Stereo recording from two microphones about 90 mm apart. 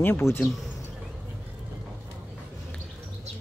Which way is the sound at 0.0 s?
25° left (ahead or behind).